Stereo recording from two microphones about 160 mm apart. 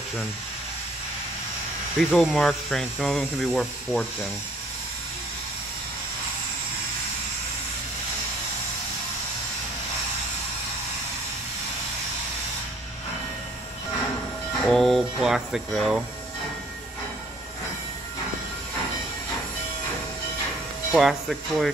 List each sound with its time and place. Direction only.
2.0 s speech: centre (ahead or behind)
14.6 s speech: centre (ahead or behind)
20.9 s speech: centre (ahead or behind)